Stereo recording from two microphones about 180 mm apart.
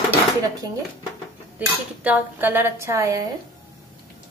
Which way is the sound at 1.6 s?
10° right (ahead or behind).